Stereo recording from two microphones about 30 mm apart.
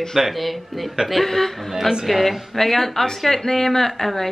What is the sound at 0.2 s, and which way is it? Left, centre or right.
Speech, centre.